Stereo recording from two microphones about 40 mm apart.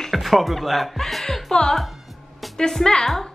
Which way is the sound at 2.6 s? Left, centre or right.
Centre.